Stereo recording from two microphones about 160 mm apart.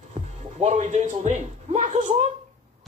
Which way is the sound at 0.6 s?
45° right (ahead or behind).